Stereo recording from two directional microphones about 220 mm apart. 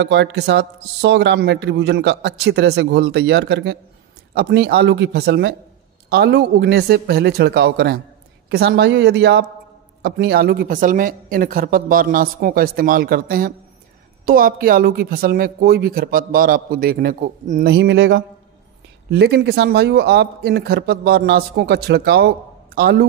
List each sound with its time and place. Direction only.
0.0 s speech: 50° right (ahead or behind)
17.7 s speech: 50° right (ahead or behind)